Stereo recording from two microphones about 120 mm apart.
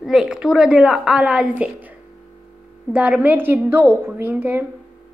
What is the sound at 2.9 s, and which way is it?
A woman's voice, 10° right (ahead or behind).